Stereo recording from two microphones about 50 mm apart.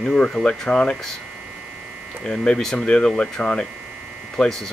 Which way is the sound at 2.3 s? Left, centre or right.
Centre.